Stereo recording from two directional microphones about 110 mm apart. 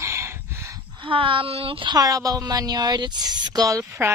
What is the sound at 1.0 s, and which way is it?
Speech, 50° right (ahead or behind).